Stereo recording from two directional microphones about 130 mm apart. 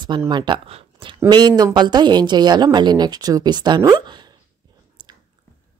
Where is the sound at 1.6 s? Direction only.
35° right (ahead or behind).